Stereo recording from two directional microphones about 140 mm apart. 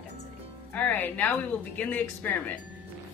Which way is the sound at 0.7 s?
10° left (ahead or behind).